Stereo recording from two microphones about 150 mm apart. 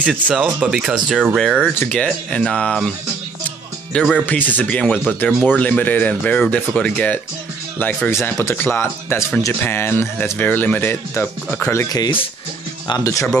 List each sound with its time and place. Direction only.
0.0 s speech: 5° right (ahead or behind)
4.0 s speech: 10° left (ahead or behind)